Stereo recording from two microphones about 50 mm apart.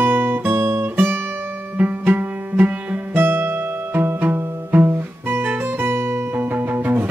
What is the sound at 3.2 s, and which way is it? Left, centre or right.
Music, right.